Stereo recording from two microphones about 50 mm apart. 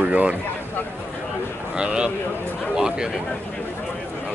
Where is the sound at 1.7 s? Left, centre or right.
Centre.